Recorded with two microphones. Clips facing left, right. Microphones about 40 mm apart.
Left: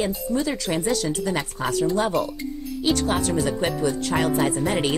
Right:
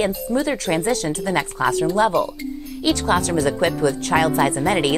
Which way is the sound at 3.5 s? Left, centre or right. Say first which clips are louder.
Right 4 dB; right.